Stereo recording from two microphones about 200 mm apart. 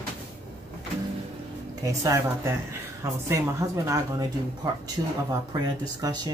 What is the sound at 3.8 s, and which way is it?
Speech, 15° right (ahead or behind).